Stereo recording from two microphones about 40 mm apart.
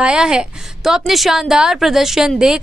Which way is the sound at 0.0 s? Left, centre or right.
Centre.